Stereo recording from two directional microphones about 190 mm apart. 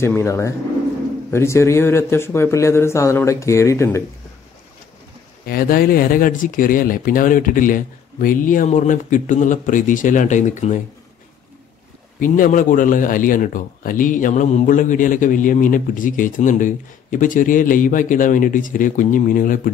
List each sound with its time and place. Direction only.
0.0 s speech: 15° left (ahead or behind)
5.5 s a man's voice: 50° left (ahead or behind)
12.2 s a man's voice: 45° left (ahead or behind)